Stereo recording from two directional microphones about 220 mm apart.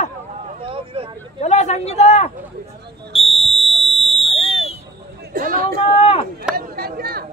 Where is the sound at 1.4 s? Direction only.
30° left (ahead or behind).